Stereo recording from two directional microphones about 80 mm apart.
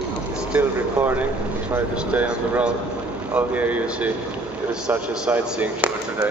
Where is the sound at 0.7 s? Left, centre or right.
Right.